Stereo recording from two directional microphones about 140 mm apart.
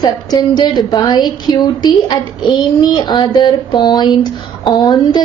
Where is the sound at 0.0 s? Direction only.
30° left (ahead or behind).